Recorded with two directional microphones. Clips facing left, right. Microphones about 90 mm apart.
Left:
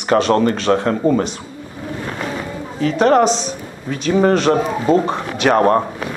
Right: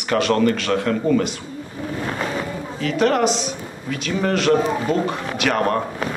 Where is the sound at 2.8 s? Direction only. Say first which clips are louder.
Left 5 dB; 30° left (ahead or behind).